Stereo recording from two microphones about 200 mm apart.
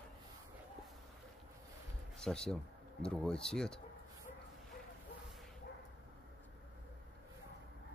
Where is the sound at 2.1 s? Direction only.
5° left (ahead or behind).